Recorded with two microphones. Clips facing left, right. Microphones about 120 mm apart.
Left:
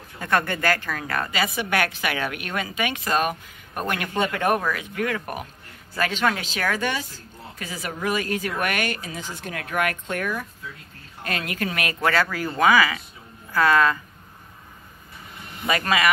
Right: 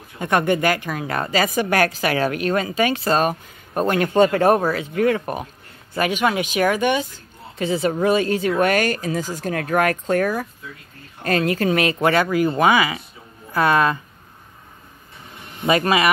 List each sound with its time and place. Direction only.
0.2 s speech: 20° right (ahead or behind)
1.3 s a woman's voice: 40° right (ahead or behind); by 5.5 s 25° right (ahead or behind)
5.9 s a woman's voice: 15° right (ahead or behind)
15.6 s speech: 25° right (ahead or behind)